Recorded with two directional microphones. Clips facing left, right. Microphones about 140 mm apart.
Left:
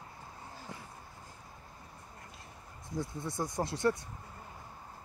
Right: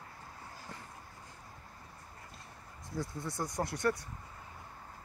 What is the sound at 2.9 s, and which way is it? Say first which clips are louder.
Speech: left 2 dB; 25° left (ahead or behind).